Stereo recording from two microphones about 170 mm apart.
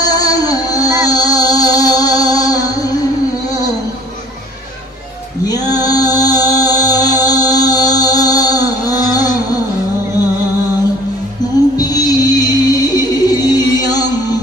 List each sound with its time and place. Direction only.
0.0 s music: 20° left (ahead or behind)
5.5 s music: 20° left (ahead or behind)
11.7 s music: 20° left (ahead or behind)